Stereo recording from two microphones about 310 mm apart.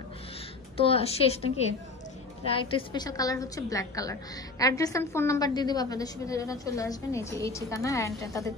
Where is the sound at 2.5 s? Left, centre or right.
Centre.